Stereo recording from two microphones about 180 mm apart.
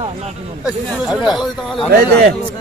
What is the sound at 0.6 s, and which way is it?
Speech, 5° right (ahead or behind).